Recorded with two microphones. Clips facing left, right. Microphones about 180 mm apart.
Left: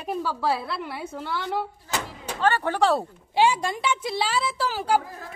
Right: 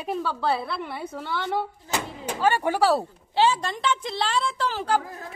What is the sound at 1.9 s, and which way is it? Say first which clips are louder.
Speech: right 2 dB; 15° right (ahead or behind).